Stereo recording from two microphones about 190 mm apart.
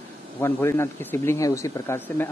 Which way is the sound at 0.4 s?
15° left (ahead or behind).